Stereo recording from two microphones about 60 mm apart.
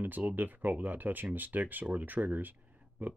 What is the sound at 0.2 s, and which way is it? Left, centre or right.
Speech, right.